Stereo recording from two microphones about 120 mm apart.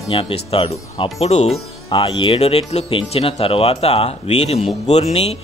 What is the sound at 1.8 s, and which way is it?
Speech, 45° left (ahead or behind).